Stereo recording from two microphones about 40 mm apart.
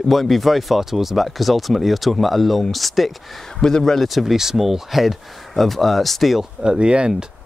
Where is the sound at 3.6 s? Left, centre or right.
Centre.